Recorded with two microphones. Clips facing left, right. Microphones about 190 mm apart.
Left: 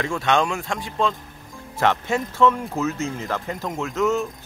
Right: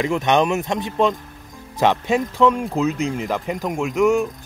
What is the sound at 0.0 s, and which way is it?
Speech, 20° right (ahead or behind).